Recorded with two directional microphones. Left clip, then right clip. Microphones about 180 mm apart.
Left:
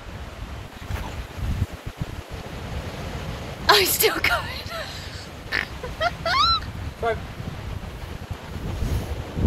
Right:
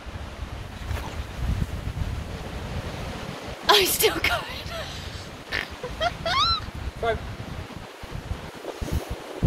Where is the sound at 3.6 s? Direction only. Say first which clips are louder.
Left 1 dB; centre (ahead or behind).